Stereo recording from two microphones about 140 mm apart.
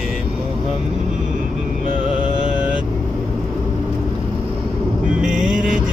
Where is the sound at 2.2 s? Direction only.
5° right (ahead or behind).